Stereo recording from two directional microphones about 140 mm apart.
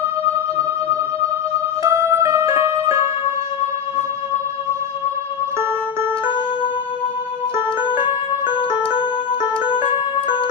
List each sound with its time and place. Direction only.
1.8 s music: 20° right (ahead or behind)
7.9 s music: 35° left (ahead or behind)